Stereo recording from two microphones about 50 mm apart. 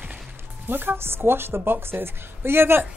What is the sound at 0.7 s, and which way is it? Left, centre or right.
A woman's voice, right.